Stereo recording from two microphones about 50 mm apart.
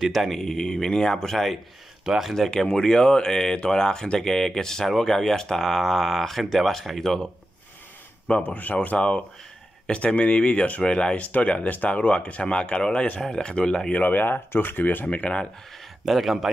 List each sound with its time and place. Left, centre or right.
0.1 s speech: centre
2.0 s speech: centre
2.3 s speech: centre
8.3 s speech: left; by 13.9 s centre
13.9 s speech: left
16.1 s a man's voice: centre